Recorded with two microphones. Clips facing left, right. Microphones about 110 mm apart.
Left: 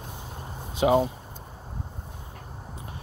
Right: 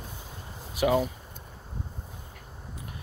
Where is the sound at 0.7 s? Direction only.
25° left (ahead or behind).